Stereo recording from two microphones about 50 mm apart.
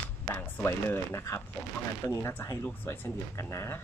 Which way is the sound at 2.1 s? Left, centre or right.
Left.